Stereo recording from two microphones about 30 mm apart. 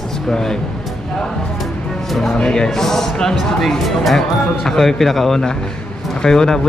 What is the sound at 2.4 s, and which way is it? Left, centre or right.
Speech, left.